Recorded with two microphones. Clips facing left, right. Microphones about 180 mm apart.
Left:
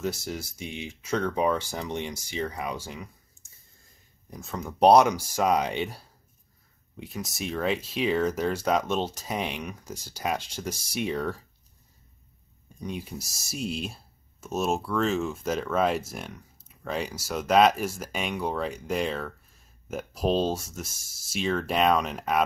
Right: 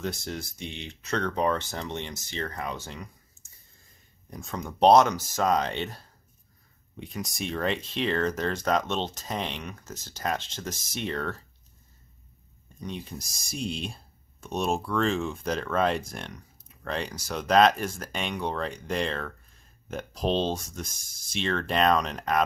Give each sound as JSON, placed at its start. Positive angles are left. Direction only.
{"t": 0.0, "sound": "speech", "side_deg": 5}
{"t": 12.8, "sound": "speech", "side_deg": 10}